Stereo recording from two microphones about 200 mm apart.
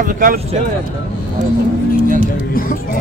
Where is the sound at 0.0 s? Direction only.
45° right (ahead or behind).